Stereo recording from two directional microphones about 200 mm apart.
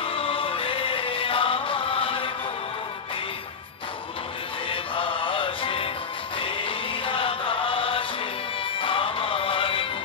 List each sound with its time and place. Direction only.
0.0 s music: 25° left (ahead or behind)
4.6 s music: 25° left (ahead or behind)